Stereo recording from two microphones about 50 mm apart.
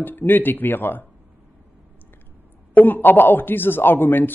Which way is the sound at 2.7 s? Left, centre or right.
Left.